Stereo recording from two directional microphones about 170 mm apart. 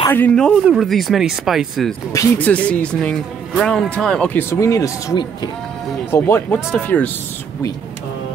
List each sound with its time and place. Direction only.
0.1 s speech: 10° left (ahead or behind)